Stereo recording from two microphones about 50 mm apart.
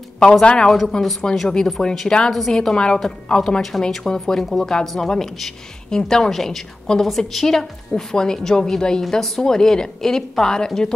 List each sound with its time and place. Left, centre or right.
0.2 s a woman's voice: left